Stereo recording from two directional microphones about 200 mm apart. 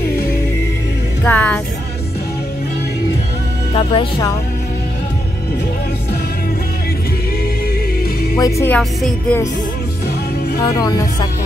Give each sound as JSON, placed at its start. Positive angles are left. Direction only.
{"t": 1.2, "sound": "speech", "side_deg": 10}
{"t": 3.7, "sound": "speech", "side_deg": 25}
{"t": 8.4, "sound": "speech", "side_deg": 15}
{"t": 10.6, "sound": "speech", "side_deg": 20}